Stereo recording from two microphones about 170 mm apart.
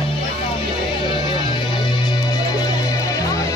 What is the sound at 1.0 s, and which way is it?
Music, 30° left (ahead or behind).